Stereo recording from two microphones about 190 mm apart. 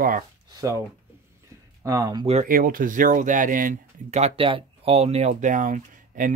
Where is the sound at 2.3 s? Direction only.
40° right (ahead or behind).